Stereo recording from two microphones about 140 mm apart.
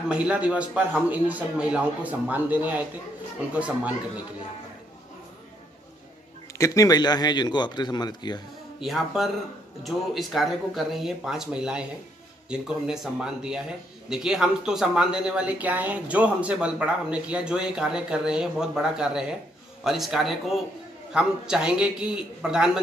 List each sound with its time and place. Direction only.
0.1 s a man's voice: 10° right (ahead or behind)
6.6 s speech: 25° left (ahead or behind)
8.8 s a man's voice: centre (ahead or behind)